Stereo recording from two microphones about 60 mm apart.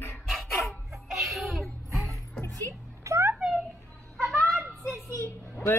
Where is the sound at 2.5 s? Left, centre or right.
Right.